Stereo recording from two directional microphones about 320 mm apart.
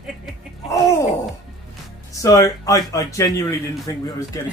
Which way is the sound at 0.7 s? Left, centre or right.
Centre.